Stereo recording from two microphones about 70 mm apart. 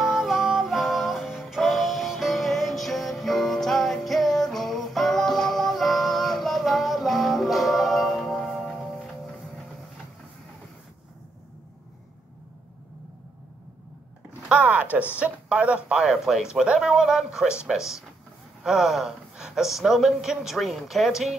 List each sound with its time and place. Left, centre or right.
0.0 s music: centre
14.5 s a sound: right
15.1 s speech: centre
16.0 s speech: centre